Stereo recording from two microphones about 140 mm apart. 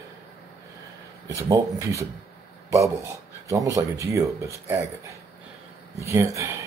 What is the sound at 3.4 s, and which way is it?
Speech, 25° right (ahead or behind).